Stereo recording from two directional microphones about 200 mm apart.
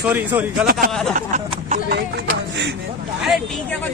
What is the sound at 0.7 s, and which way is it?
Speech, 45° right (ahead or behind).